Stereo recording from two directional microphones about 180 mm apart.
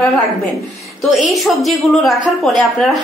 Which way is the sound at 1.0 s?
Centre (ahead or behind).